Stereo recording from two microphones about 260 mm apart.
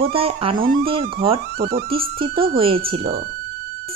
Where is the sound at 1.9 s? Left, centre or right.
Right.